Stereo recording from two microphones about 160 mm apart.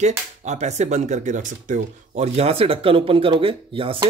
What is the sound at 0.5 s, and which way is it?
Speech, 45° right (ahead or behind).